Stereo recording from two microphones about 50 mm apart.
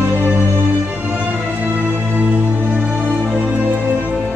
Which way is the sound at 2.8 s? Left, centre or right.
Right.